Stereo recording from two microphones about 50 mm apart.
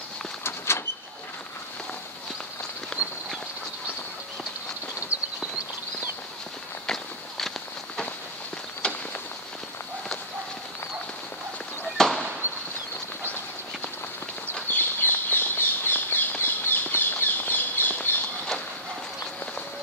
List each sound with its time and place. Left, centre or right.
0.4 s a sound: left
2.9 s walk: centre
6.9 s walk: centre
8.8 s walk: centre
12.0 s fireworks: centre
14.5 s crow: left